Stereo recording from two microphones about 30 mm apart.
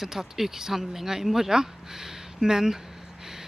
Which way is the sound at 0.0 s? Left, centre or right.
Centre.